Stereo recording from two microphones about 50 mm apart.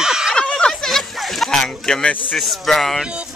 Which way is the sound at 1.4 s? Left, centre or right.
Centre.